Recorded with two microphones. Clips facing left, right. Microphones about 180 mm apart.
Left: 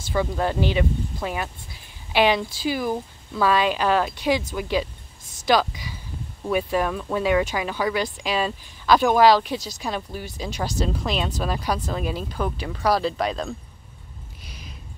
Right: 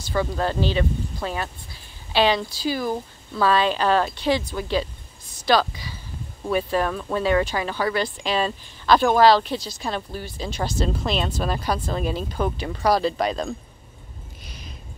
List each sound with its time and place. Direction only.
0.1 s speech: 15° left (ahead or behind)